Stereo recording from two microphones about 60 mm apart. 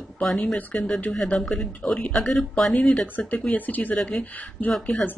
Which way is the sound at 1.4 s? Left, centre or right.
Centre.